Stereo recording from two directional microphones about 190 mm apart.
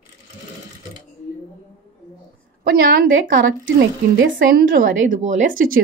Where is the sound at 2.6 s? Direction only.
50° right (ahead or behind).